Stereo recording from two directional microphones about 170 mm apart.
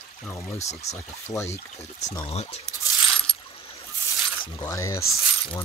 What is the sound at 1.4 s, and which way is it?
Speech, 40° left (ahead or behind).